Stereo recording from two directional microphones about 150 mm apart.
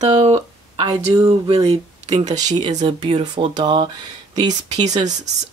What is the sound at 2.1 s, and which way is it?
Speech, 25° right (ahead or behind).